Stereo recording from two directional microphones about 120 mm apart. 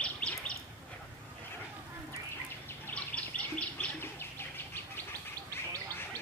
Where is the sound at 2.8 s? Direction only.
10° left (ahead or behind).